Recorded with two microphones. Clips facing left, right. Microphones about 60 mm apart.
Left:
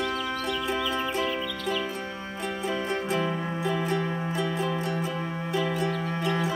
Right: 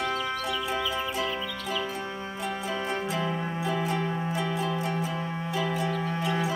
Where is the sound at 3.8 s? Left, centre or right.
Left.